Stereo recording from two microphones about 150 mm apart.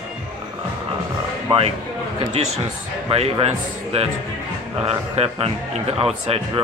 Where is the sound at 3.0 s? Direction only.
45° right (ahead or behind).